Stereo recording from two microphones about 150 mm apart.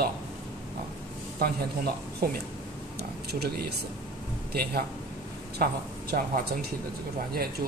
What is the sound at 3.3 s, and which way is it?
Speech, 90° right.